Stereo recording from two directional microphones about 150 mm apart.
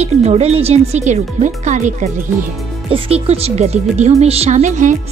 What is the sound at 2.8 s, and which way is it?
Speech, 40° right (ahead or behind).